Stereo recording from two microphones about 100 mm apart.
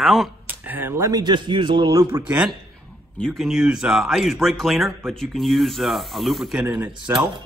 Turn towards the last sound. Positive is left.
turn(degrees=-50)  # may be behind; listen again after turning